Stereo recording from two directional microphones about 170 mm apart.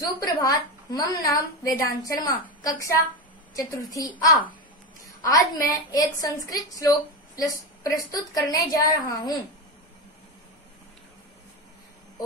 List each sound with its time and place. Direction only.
0.0 s a woman's voice: 20° left (ahead or behind)